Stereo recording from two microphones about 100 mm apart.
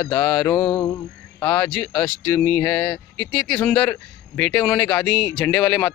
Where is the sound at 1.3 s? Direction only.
20° left (ahead or behind).